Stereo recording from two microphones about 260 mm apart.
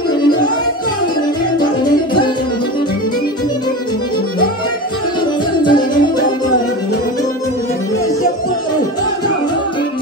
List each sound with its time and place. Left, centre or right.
5.6 s music: centre